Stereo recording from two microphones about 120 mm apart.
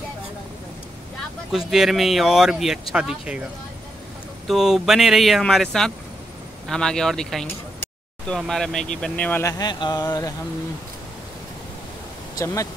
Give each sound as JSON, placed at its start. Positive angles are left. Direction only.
{"t": 1.7, "sound": "speech", "side_deg": -5}
{"t": 4.5, "sound": "speech", "side_deg": 0}
{"t": 9.4, "sound": "speech", "side_deg": 30}